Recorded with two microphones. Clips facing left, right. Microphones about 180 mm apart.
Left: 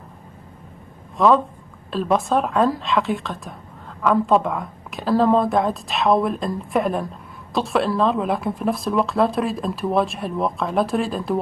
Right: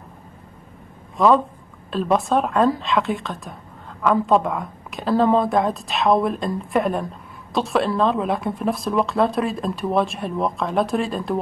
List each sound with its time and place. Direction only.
1.1 s speech: centre (ahead or behind)